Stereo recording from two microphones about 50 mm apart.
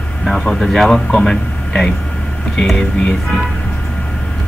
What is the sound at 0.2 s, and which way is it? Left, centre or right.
Speech, centre.